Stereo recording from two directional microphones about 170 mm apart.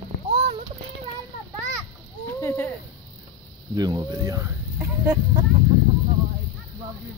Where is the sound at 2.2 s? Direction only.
10° left (ahead or behind).